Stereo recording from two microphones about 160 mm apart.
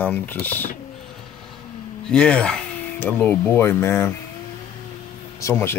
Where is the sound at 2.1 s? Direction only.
5° left (ahead or behind).